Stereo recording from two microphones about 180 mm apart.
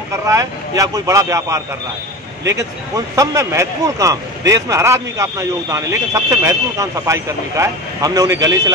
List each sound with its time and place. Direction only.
0.3 s a man's voice: 20° right (ahead or behind)
3.2 s a man's voice: 15° right (ahead or behind)